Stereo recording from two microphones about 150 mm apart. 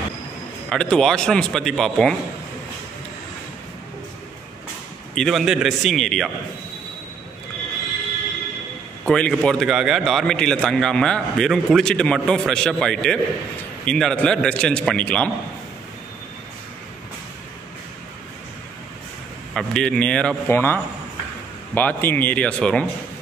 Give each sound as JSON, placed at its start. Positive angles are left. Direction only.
{"t": 0.7, "sound": "a man's voice", "side_deg": 5}
{"t": 5.1, "sound": "a man's voice", "side_deg": 0}
{"t": 9.0, "sound": "a man's voice", "side_deg": 5}
{"t": 19.5, "sound": "a man's voice", "side_deg": 5}